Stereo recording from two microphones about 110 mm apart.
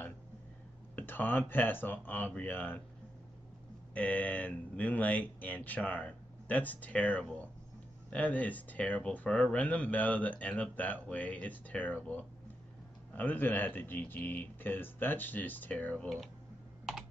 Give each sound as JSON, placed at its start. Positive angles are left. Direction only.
{"t": 0.9, "sound": "a sound", "side_deg": 15}
{"t": 1.5, "sound": "speech", "side_deg": 20}
{"t": 3.9, "sound": "speech", "side_deg": 15}